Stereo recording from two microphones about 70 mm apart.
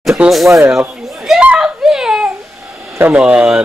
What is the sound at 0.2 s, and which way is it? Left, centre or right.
Speech, centre.